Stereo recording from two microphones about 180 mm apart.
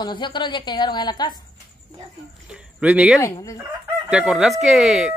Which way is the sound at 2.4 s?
5° right (ahead or behind).